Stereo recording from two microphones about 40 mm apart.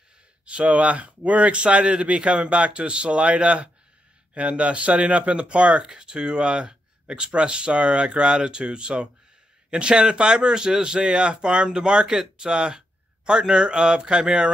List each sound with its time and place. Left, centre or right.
0.5 s speech: right